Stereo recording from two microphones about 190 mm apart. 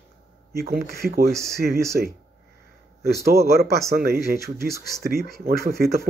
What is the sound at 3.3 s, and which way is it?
Speech, 55° right (ahead or behind).